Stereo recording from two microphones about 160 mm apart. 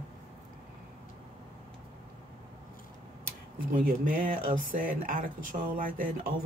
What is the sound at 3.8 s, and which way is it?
Speech, 60° right (ahead or behind).